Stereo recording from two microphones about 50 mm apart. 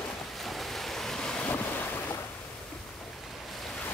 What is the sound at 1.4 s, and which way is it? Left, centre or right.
Boat, left.